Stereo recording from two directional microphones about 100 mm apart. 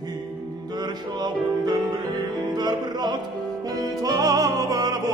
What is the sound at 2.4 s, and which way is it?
Music, 45° right (ahead or behind).